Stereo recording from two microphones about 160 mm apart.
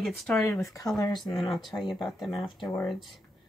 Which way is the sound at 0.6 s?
20° left (ahead or behind).